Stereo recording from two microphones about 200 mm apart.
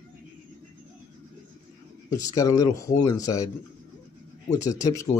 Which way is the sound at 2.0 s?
15° left (ahead or behind).